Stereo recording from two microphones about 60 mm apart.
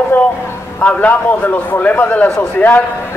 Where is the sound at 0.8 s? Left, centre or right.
Left.